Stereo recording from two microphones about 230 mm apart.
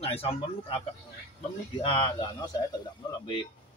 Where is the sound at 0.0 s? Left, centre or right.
Left.